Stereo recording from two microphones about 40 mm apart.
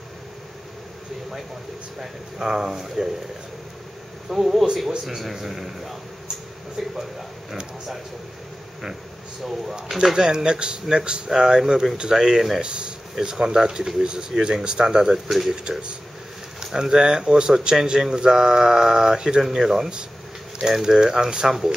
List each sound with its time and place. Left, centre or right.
2.0 s a man's voice: centre
4.3 s a man's voice: centre
9.5 s a man's voice: centre
12.6 s a man's voice: right
15.2 s a man's voice: centre
16.5 s a man's voice: centre